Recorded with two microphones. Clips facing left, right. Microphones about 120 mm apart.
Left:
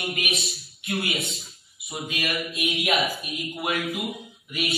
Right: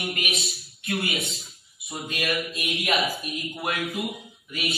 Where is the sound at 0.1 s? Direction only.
Centre (ahead or behind).